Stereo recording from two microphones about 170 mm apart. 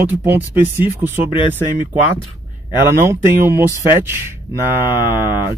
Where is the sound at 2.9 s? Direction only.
15° right (ahead or behind).